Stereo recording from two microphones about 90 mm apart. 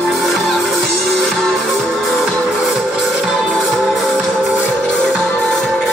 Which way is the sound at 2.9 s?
10° right (ahead or behind).